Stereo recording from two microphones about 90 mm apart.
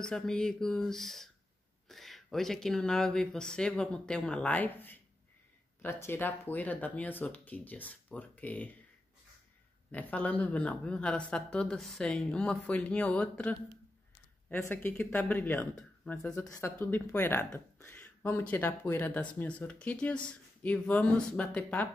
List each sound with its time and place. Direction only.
0.0 s speech: 10° left (ahead or behind)
9.8 s speech: 15° left (ahead or behind)
14.9 s speech: 15° left (ahead or behind)
16.2 s speech: 10° left (ahead or behind)
16.4 s speech: 40° left (ahead or behind)
17.1 s speech: 25° left (ahead or behind)